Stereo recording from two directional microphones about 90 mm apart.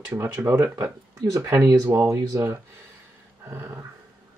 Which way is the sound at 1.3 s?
35° right (ahead or behind).